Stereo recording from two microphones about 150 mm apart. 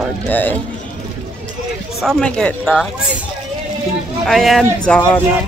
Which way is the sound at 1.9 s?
5° left (ahead or behind).